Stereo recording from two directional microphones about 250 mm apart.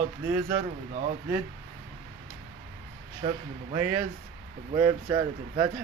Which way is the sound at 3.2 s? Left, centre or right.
Right.